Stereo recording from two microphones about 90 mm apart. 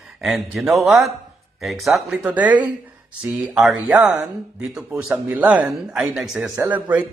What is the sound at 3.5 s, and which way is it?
Speech, 5° right (ahead or behind).